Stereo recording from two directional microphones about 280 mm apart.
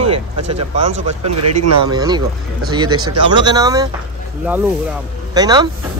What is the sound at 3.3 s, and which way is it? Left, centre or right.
Speech, centre.